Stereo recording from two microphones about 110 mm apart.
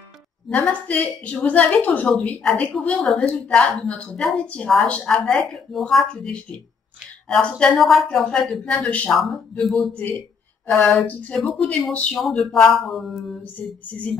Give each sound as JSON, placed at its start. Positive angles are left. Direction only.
{"t": 0.5, "sound": "a woman's voice", "side_deg": 15}